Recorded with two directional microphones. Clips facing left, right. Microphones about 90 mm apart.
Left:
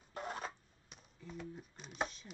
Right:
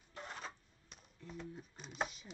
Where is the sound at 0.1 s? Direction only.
45° left (ahead or behind).